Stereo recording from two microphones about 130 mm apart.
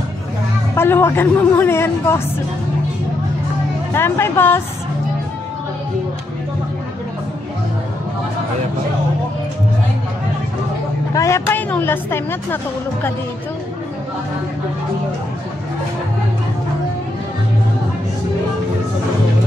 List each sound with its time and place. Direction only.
0.7 s a woman's voice: 15° left (ahead or behind)
3.9 s speech: 20° left (ahead or behind)
11.1 s a woman's voice: 20° left (ahead or behind)